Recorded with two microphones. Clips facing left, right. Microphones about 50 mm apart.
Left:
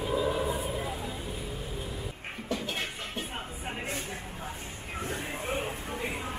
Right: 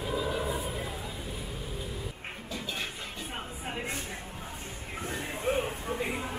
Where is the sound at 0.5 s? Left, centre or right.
Centre.